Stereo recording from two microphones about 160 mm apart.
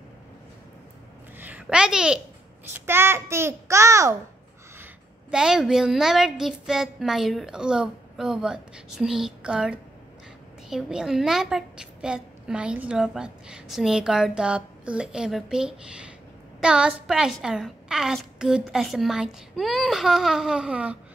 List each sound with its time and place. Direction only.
1.4 s a child's voice: 10° right (ahead or behind)
2.9 s a child's voice: 15° right (ahead or behind)
5.3 s a woman's voice: 5° right (ahead or behind)